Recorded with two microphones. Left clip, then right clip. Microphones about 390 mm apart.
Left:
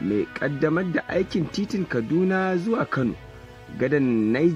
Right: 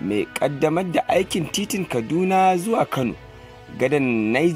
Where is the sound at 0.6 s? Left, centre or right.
Centre.